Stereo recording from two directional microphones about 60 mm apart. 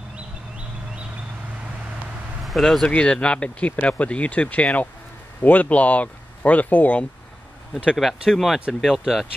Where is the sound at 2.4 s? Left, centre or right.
Centre.